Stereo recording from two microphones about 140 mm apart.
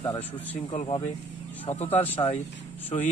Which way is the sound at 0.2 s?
40° left (ahead or behind).